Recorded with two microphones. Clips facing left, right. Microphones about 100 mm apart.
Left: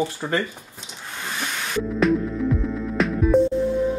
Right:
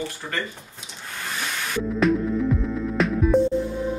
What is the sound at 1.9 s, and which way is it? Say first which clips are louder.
Music: even; centre (ahead or behind).